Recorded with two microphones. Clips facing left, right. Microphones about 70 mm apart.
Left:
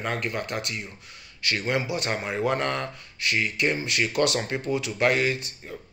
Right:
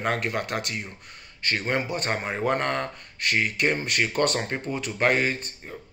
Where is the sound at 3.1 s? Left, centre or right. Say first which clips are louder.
Right 1 dB; right.